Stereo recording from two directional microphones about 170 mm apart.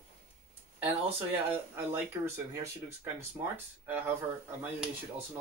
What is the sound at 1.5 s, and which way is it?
Speech, 15° right (ahead or behind).